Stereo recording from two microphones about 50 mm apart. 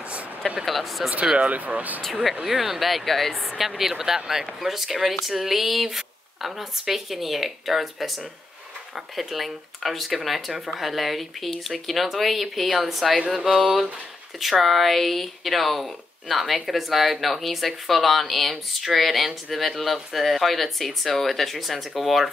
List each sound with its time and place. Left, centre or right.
0.7 s speech: centre
1.2 s speech: centre
1.5 s speech: right
2.4 s speech: centre
3.5 s speech: centre
9.1 s speech: centre